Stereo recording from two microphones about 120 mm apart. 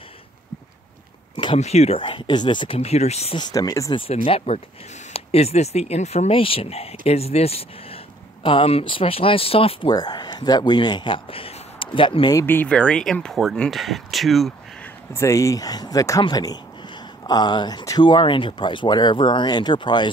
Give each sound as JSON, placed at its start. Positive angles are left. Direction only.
{"t": 1.3, "sound": "a sound", "side_deg": 45}
{"t": 1.6, "sound": "speech", "side_deg": 65}
{"t": 2.8, "sound": "speech", "side_deg": 60}
{"t": 3.3, "sound": "speech", "side_deg": 35}
{"t": 4.1, "sound": "speech", "side_deg": 55}
{"t": 9.9, "sound": "speech", "side_deg": 35}
{"t": 12.4, "sound": "speech", "side_deg": 10}
{"t": 15.1, "sound": "speech", "side_deg": 25}